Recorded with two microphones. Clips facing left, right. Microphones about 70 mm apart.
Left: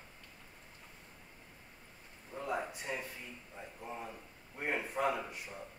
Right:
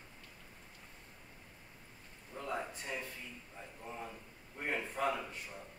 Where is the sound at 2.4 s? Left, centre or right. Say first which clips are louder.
Left 2 dB; centre.